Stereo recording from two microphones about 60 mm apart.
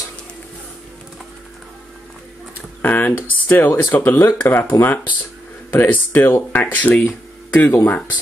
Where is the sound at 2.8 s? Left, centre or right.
Left.